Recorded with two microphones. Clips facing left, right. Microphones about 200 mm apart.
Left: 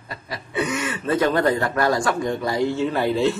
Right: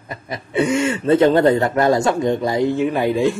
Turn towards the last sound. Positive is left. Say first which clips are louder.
# right 3 dB
turn(degrees=-15)  # may be behind; listen again after turning